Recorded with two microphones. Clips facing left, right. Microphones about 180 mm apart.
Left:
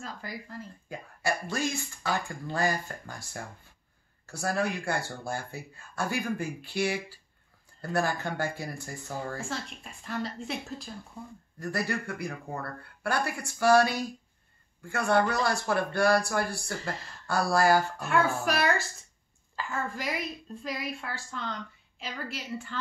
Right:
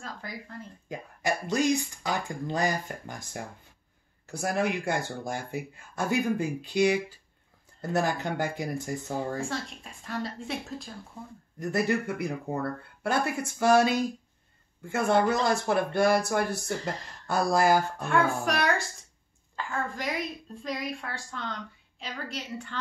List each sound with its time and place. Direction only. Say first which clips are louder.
0.0 s a woman's voice: even; 5° left (ahead or behind)
0.8 s speech: right 1 dB; 20° right (ahead or behind)
9.4 s a woman's voice: right 3 dB; centre (ahead or behind)
11.6 s speech: right 5 dB; 20° right (ahead or behind)
18.0 s a woman's voice: right 1 dB; 5° left (ahead or behind)